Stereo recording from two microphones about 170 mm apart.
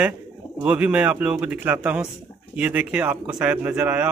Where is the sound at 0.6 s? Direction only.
10° right (ahead or behind).